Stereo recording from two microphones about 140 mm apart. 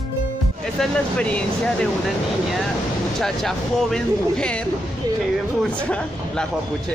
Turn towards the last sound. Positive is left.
turn(degrees=5)  # may be behind; listen again after turning